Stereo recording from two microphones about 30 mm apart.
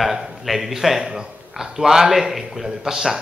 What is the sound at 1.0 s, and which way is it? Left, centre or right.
Speech, right.